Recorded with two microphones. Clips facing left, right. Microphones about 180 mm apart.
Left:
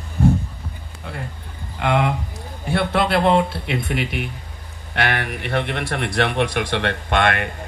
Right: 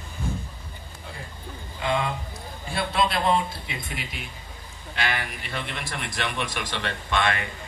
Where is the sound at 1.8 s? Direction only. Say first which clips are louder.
Left 6 dB; 70° left (ahead or behind).